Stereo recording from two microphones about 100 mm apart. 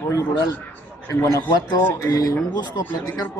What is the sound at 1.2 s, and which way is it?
A man's voice, 35° left (ahead or behind).